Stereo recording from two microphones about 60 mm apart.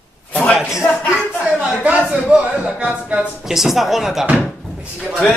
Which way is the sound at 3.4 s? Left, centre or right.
Centre.